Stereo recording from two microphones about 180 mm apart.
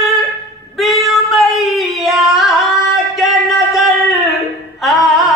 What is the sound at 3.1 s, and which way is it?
Music, centre (ahead or behind).